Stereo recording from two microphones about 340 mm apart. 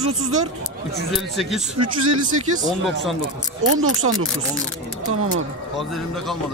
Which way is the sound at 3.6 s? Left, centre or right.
Right.